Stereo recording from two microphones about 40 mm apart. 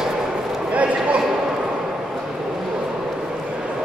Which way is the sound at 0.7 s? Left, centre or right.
Right.